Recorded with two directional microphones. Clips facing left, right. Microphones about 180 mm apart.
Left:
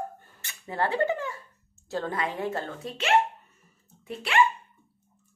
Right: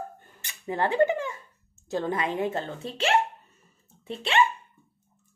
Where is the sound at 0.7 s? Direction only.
15° right (ahead or behind).